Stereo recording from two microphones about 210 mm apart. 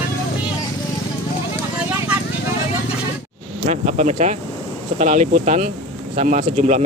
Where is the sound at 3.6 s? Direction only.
30° right (ahead or behind).